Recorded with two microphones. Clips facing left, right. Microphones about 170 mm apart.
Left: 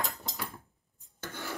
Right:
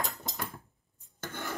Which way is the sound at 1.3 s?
20° right (ahead or behind).